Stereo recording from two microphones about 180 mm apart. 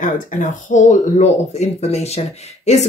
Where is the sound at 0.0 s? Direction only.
45° left (ahead or behind).